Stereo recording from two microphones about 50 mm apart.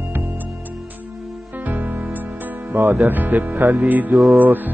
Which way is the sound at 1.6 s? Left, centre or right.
Right.